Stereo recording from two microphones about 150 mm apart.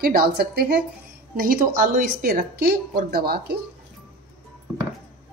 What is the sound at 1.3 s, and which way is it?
A woman's voice, 75° right (ahead or behind).